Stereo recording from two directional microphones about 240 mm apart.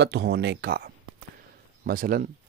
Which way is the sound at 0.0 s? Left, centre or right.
Right.